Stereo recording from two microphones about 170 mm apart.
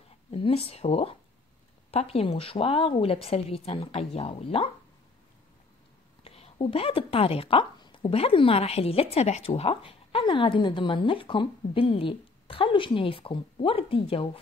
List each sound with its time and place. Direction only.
0.3 s a woman's voice: 35° left (ahead or behind)
6.2 s a woman's voice: 35° left (ahead or behind)